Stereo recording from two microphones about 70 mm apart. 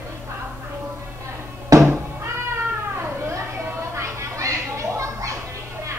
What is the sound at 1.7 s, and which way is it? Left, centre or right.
Cat, right.